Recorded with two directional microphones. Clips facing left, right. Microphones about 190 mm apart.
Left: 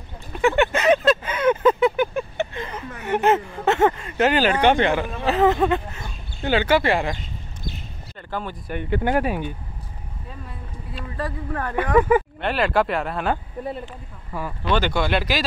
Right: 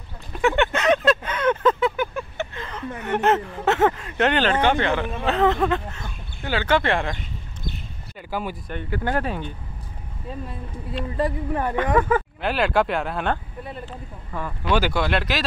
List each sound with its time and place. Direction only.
0.4 s a sound: centre (ahead or behind)
1.9 s vehicle: 20° left (ahead or behind)
3.0 s speech: 5° left (ahead or behind); by 5.0 s 20° left (ahead or behind)
5.1 s speech: 5° left (ahead or behind)
6.4 s speech: 20° left (ahead or behind)
6.7 s speech: 5° left (ahead or behind)
8.2 s speech: 10° right (ahead or behind)
8.9 s speech: 15° left (ahead or behind)
11.1 s speech: 20° right (ahead or behind)
11.7 s speech: 10° left (ahead or behind)
12.4 s speech: centre (ahead or behind)
14.7 s speech: 5° right (ahead or behind)